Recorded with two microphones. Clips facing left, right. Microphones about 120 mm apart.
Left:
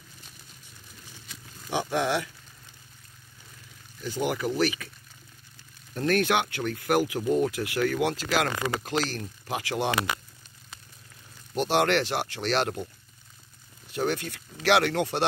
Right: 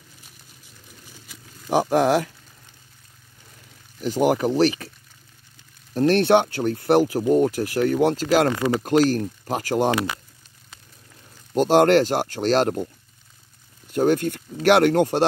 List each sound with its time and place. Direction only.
1.7 s speech: 45° right (ahead or behind)
4.2 s speech: 40° right (ahead or behind)
5.9 s speech: 30° right (ahead or behind)
11.5 s speech: 40° right (ahead or behind)
13.9 s speech: 45° right (ahead or behind)